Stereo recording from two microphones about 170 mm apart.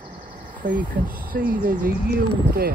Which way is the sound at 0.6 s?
55° right (ahead or behind).